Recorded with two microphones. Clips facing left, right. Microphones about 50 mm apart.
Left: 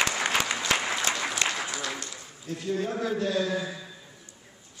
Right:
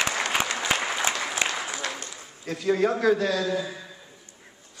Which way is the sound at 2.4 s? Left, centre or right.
Right.